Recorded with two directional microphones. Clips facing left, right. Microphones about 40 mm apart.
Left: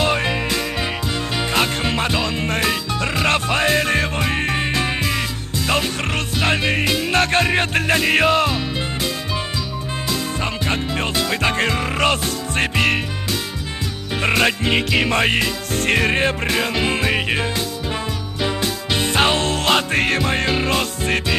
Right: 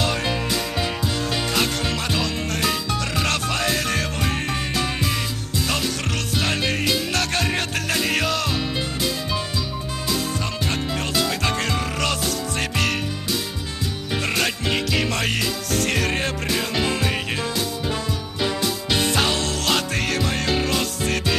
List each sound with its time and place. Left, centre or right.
0.0 s music: left
10.4 s music: left
14.2 s music: left
18.9 s music: left